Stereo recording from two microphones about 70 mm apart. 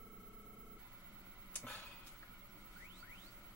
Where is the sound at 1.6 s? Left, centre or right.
Left.